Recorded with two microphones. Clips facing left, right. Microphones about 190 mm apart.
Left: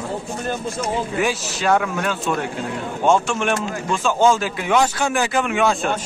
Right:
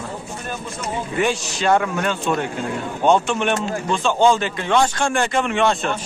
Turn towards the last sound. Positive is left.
turn(degrees=0)  # may be behind; listen again after turning